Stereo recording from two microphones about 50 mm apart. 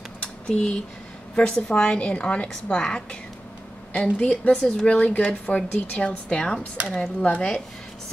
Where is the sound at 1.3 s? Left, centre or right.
Centre.